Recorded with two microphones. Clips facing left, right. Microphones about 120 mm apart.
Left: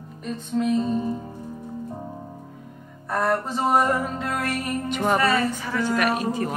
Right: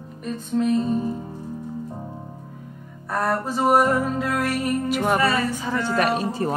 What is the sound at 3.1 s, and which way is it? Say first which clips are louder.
Music: even; centre (ahead or behind).